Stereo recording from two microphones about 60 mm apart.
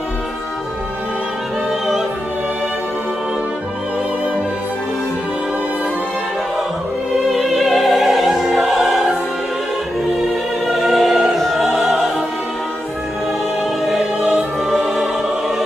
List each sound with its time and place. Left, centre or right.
7.2 s opera: centre
10.7 s music: centre
13.8 s music: centre